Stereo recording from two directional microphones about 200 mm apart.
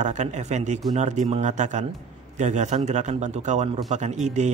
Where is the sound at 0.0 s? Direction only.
35° right (ahead or behind).